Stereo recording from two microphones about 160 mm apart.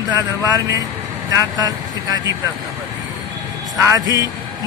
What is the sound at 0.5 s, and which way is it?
A man's voice, 25° right (ahead or behind).